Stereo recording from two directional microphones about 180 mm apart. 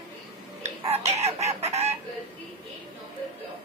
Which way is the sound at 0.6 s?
35° right (ahead or behind).